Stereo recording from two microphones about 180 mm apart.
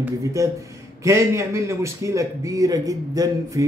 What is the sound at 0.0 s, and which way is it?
A man's voice, 15° right (ahead or behind).